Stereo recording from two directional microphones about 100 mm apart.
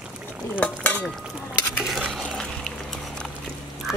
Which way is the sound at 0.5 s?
15° left (ahead or behind).